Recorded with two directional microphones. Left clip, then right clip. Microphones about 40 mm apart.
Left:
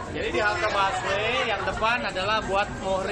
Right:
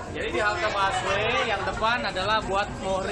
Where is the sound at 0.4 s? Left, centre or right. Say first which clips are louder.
Left 1 dB; centre.